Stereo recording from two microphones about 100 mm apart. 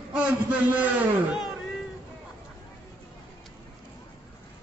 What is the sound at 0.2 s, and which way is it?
A man's voice, 15° right (ahead or behind).